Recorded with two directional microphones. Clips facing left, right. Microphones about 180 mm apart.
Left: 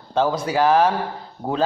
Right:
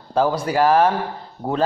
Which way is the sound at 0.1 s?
10° right (ahead or behind).